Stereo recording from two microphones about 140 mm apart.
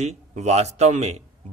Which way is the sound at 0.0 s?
55° right (ahead or behind).